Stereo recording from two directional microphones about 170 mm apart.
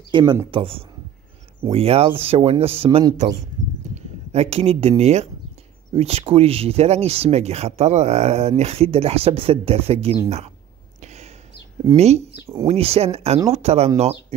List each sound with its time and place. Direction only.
0.1 s speech: 25° right (ahead or behind)
11.0 s a sound: 40° right (ahead or behind)
12.0 s speech: 40° right (ahead or behind)